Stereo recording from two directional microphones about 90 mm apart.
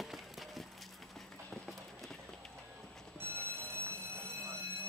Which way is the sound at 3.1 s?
25° right (ahead or behind).